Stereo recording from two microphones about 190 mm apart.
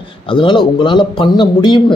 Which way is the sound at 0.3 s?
25° left (ahead or behind).